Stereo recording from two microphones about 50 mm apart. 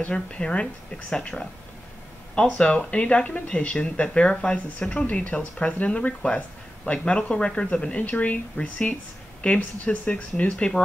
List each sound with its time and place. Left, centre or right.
0.1 s speech: centre
5.4 s speech: left